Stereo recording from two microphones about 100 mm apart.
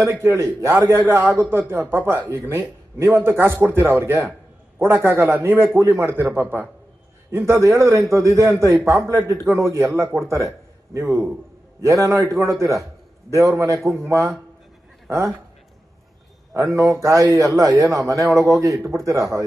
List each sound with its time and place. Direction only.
0.0 s a man's voice: 30° right (ahead or behind)
11.1 s a man's voice: centre (ahead or behind)
11.8 s a man's voice: 30° right (ahead or behind)
16.5 s a man's voice: 35° right (ahead or behind)